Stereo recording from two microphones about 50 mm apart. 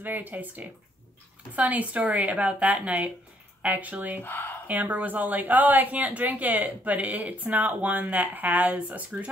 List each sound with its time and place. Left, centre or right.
0.0 s a woman's voice: right
4.2 s speech: left
4.6 s a woman's voice: right